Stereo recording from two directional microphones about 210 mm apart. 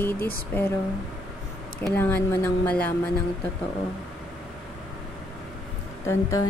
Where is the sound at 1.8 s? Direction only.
10° left (ahead or behind).